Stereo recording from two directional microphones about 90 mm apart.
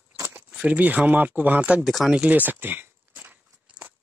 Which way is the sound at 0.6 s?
15° right (ahead or behind).